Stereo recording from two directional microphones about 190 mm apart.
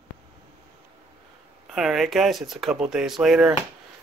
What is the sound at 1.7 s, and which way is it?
Speech, centre (ahead or behind).